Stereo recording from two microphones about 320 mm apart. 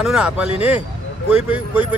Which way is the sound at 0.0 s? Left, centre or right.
Centre.